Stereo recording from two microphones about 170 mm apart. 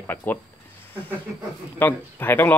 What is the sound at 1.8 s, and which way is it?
Speech, 10° left (ahead or behind).